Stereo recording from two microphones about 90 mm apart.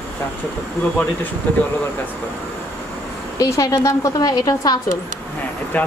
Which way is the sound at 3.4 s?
35° left (ahead or behind).